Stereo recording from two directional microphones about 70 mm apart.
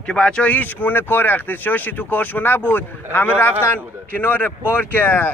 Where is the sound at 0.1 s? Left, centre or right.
Centre.